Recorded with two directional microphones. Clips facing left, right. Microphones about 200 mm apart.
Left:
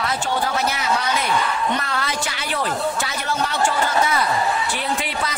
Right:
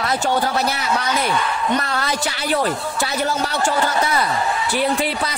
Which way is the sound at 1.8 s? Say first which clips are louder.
Right 3 dB; 40° right (ahead or behind).